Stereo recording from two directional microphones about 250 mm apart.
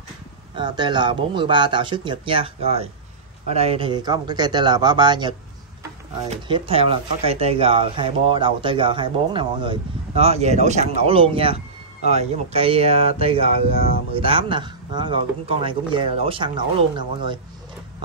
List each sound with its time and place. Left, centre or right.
0.6 s speech: centre
6.3 s speech: right